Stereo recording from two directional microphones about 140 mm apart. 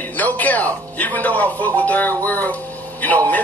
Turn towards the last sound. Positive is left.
turn(degrees=10)  # may be behind; listen again after turning